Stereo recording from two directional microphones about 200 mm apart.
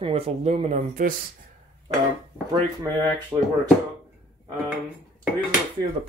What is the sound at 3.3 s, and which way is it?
Speech, 15° right (ahead or behind).